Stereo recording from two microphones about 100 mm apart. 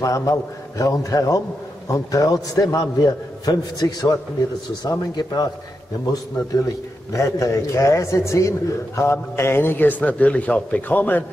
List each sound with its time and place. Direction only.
0.0 s a man's voice: 30° left (ahead or behind)
7.1 s a man's voice: 30° left (ahead or behind)